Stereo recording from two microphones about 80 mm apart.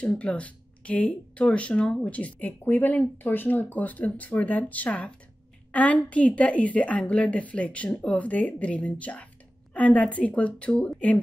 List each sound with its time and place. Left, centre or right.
0.0 s speech: centre